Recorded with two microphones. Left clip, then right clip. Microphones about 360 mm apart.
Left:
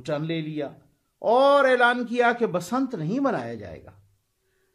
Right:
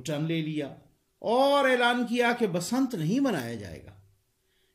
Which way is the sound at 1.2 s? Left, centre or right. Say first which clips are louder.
Left 5 dB; left.